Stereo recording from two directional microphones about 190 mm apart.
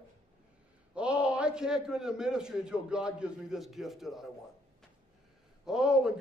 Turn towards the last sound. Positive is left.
turn(degrees=-5)  # may be behind; listen again after turning